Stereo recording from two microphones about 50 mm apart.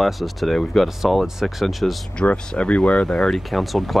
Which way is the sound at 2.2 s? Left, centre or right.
Left.